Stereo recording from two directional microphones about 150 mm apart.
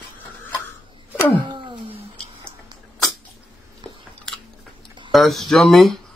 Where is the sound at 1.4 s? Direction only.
30° right (ahead or behind).